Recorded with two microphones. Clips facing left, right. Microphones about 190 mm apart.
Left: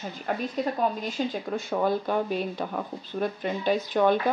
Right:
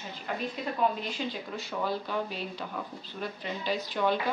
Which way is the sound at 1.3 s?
50° left (ahead or behind).